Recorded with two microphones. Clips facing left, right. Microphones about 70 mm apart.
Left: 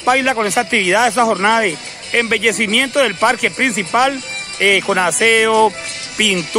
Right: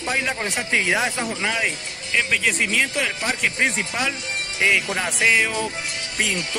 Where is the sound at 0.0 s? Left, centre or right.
Left.